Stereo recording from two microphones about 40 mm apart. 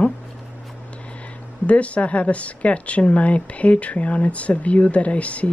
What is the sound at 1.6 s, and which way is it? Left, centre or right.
Speech, left.